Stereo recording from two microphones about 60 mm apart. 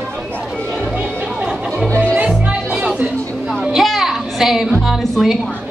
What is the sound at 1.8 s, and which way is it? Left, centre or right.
Speech, left.